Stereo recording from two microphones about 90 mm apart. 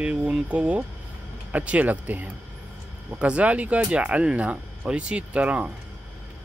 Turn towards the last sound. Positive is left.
turn(degrees=-15)  # may be behind; listen again after turning